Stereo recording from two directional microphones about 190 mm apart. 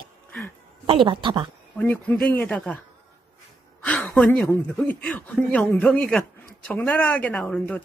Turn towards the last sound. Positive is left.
turn(degrees=5)  # may be behind; listen again after turning